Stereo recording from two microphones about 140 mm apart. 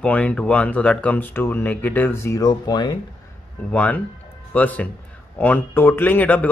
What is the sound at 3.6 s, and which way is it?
Speech, 10° left (ahead or behind).